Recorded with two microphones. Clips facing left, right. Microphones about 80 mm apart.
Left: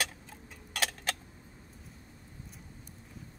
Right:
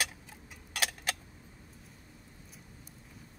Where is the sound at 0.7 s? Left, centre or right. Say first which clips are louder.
Left 1 dB; centre.